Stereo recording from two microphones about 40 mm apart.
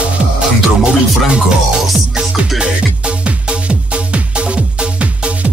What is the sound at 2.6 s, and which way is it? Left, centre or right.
Music, right.